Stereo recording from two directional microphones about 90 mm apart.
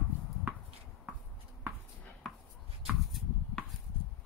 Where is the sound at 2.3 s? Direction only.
Centre (ahead or behind).